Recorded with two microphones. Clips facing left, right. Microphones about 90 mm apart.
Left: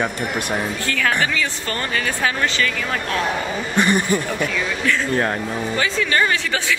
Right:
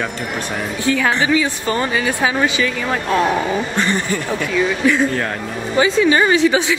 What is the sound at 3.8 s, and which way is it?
Speech, 15° left (ahead or behind).